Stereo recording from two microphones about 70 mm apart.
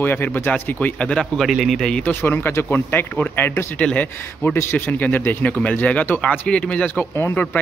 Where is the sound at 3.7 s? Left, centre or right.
Centre.